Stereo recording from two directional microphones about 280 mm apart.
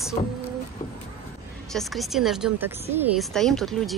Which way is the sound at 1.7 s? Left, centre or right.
Centre.